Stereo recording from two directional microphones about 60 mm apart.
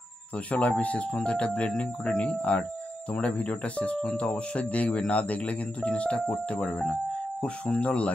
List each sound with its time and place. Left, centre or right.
0.5 s speech: left